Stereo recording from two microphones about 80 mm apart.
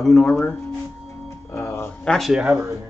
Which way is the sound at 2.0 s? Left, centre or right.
Centre.